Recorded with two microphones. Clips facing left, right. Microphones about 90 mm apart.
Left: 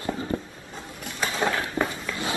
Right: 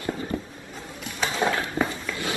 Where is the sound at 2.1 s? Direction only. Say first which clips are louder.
Even; 25° left (ahead or behind).